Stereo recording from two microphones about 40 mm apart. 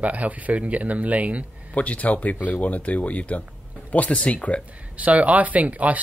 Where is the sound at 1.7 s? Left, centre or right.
Left.